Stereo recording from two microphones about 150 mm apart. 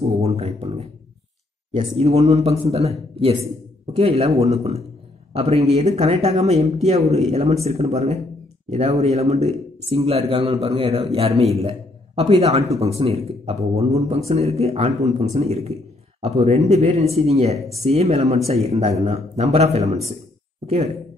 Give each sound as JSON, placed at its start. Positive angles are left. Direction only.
{"t": 0.0, "sound": "a man's voice", "side_deg": -45}